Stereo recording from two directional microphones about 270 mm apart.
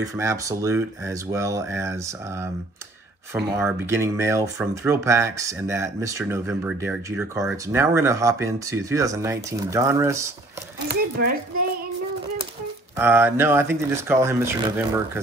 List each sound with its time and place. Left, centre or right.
0.0 s speech: centre
10.9 s speech: right
12.9 s speech: centre